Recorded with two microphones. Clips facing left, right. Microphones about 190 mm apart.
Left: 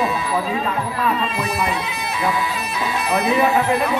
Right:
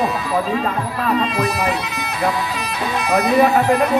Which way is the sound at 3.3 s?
40° right (ahead or behind).